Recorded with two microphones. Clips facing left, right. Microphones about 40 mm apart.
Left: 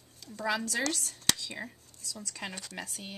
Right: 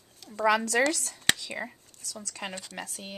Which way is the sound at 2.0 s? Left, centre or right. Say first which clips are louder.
Right 1 dB; right.